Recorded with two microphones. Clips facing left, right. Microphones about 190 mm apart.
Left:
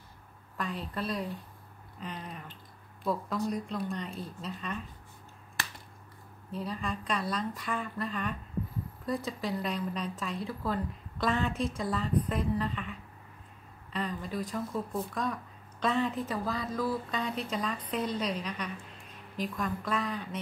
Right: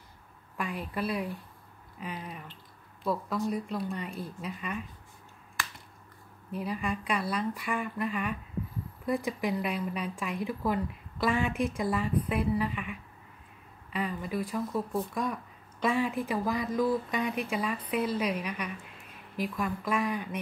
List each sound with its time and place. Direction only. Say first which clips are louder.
0.6 s a woman's voice: right 2 dB; 10° right (ahead or behind)
6.5 s speech: right 3 dB; 10° right (ahead or behind)